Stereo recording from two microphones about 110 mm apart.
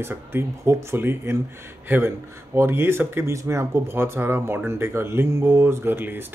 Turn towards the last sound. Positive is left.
turn(degrees=-20)  # may be behind; listen again after turning